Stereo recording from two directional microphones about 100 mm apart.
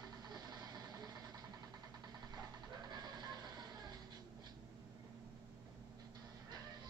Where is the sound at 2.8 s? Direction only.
40° right (ahead or behind).